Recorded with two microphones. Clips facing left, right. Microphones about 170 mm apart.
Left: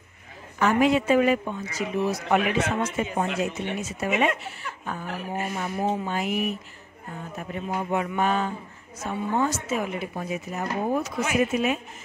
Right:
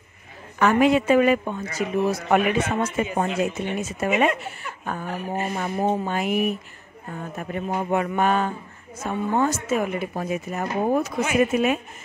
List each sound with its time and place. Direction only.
0.6 s a man's voice: 65° right (ahead or behind)